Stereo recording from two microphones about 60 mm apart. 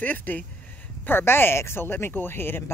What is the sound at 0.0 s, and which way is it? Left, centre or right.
Speech, left.